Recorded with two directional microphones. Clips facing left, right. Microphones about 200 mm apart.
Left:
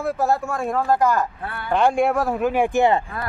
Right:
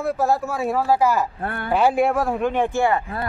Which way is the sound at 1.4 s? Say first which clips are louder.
Right 4 dB; 55° right (ahead or behind).